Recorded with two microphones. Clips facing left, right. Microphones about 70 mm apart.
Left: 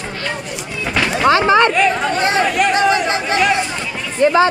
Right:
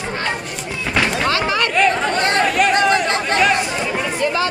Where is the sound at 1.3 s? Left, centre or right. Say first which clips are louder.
Left 7 dB; left.